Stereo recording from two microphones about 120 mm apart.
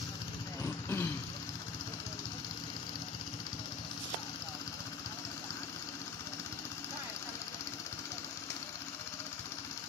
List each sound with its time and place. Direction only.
0.6 s vehicle: 20° left (ahead or behind)